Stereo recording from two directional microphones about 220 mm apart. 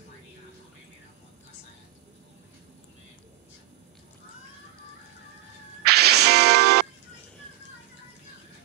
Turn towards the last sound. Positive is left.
turn(degrees=-45)  # may be behind; listen again after turning